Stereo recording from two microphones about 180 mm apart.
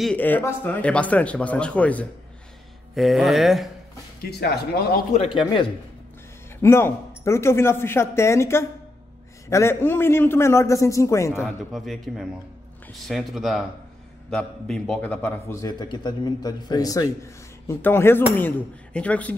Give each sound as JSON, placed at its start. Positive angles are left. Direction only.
{"t": 0.0, "sound": "a man's voice", "side_deg": 10}
{"t": 4.2, "sound": "speech", "side_deg": 60}
{"t": 5.4, "sound": "a man's voice", "side_deg": 30}
{"t": 6.6, "sound": "a man's voice", "side_deg": 15}
{"t": 11.4, "sound": "a man's voice", "side_deg": 0}